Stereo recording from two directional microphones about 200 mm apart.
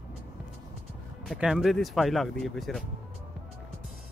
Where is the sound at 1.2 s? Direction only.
Centre (ahead or behind).